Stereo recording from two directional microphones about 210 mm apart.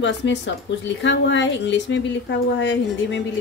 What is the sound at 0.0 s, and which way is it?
A woman's voice, 60° left (ahead or behind).